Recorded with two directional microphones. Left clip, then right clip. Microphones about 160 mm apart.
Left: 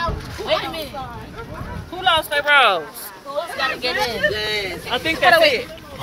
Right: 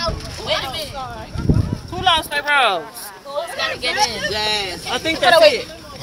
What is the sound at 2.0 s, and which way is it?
Speech, 5° left (ahead or behind).